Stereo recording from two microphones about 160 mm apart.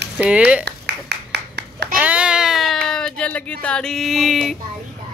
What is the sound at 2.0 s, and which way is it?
Speech, 5° right (ahead or behind).